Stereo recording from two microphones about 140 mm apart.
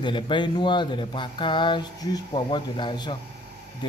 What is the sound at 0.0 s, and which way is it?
Speech, 35° left (ahead or behind).